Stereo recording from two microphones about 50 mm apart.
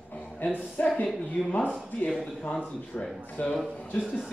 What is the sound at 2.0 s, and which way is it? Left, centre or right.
Speech, left.